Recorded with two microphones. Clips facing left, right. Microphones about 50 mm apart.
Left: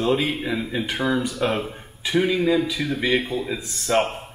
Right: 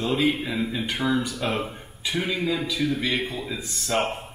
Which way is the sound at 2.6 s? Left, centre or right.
Centre.